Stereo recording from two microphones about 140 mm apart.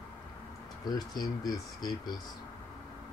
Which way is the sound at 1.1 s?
30° left (ahead or behind).